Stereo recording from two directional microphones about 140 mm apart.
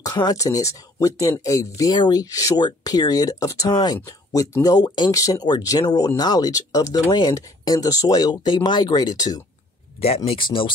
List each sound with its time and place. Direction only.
0.0 s speech: 30° left (ahead or behind)
9.9 s speech: 45° left (ahead or behind)